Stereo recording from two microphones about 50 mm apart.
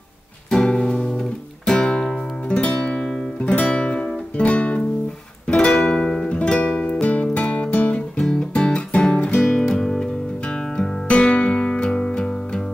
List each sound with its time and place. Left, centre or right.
0.5 s music: centre
5.7 s music: centre; by 12.6 s left